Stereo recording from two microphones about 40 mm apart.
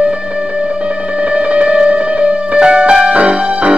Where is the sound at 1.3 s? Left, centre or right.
Right.